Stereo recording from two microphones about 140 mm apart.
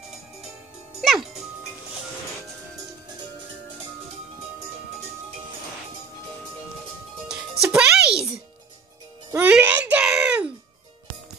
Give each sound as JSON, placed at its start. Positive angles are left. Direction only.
{"t": 7.2, "sound": "music", "side_deg": -5}
{"t": 9.3, "sound": "music", "side_deg": -15}